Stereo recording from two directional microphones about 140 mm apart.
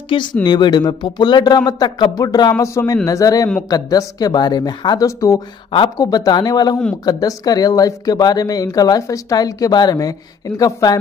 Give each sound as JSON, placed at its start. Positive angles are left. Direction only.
{"t": 0.1, "sound": "speech", "side_deg": 30}
{"t": 5.7, "sound": "speech", "side_deg": 35}